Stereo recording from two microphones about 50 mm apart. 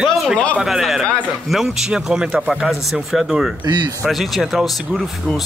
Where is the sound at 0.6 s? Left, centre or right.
Centre.